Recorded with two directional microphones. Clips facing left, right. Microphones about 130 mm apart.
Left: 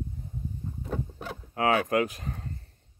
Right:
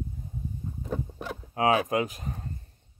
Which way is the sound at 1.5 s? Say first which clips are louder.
Right 1 dB; 20° right (ahead or behind).